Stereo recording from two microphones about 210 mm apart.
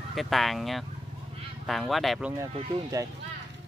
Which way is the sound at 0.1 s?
Centre (ahead or behind).